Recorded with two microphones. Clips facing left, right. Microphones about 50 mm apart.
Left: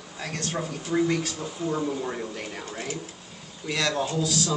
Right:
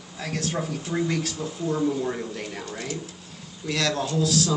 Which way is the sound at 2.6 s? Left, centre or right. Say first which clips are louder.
Right 1 dB; left.